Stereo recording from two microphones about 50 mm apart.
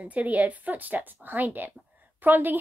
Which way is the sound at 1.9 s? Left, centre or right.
Right.